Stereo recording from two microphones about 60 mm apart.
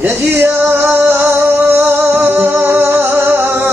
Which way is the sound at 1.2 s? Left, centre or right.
Right.